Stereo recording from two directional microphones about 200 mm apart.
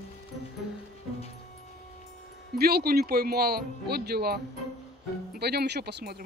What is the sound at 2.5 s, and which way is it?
Speech, 50° right (ahead or behind).